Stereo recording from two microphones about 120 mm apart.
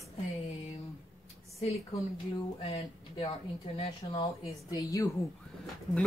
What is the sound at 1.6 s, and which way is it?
A woman's voice, 55° left (ahead or behind).